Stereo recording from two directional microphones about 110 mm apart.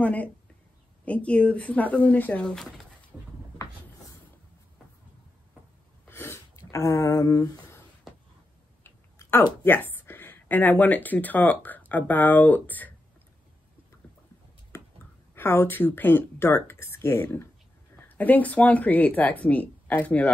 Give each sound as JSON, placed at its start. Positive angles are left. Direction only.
{"t": 0.0, "sound": "speech", "side_deg": 15}
{"t": 6.0, "sound": "a sound", "side_deg": 20}
{"t": 8.8, "sound": "speech", "side_deg": 20}
{"t": 15.3, "sound": "speech", "side_deg": 20}